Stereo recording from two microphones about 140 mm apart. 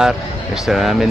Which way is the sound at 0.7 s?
Centre (ahead or behind).